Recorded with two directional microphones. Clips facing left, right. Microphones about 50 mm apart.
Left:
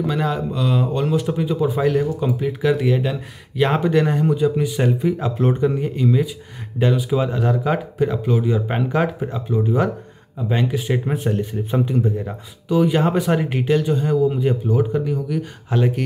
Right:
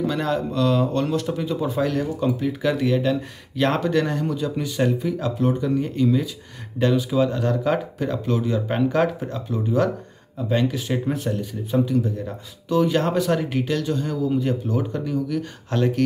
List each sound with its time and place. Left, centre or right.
0.0 s speech: centre
1.8 s speech: centre
5.4 s speech: left
5.8 s speech: centre
11.3 s speech: left
12.6 s speech: centre